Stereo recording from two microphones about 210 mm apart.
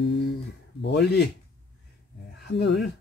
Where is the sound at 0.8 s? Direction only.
50° left (ahead or behind).